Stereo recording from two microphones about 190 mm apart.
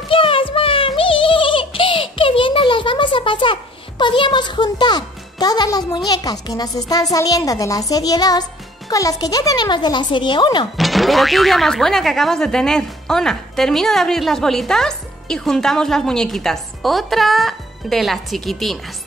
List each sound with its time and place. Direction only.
0.1 s music: 25° left (ahead or behind)
4.0 s a child's voice: 25° left (ahead or behind)
10.8 s speech: centre (ahead or behind)